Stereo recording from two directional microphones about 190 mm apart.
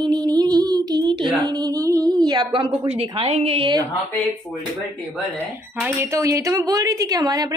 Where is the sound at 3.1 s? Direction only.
30° right (ahead or behind).